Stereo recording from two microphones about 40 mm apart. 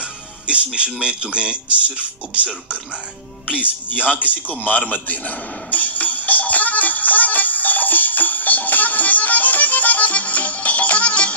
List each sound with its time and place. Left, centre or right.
1.0 s speech: right
3.9 s music: left